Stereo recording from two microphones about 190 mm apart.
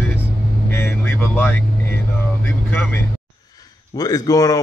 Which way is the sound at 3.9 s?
20° left (ahead or behind).